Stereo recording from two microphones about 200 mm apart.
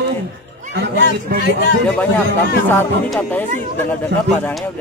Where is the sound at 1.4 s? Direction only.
50° left (ahead or behind).